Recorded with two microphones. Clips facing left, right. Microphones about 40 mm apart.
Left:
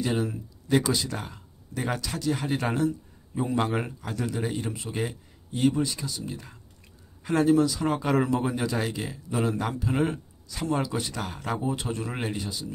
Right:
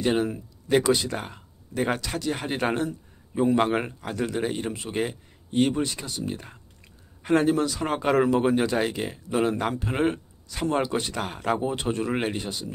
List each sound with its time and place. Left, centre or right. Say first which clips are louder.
0.0 s a man's voice: right 4 dB; right
11.1 s a man's voice: right 5 dB; right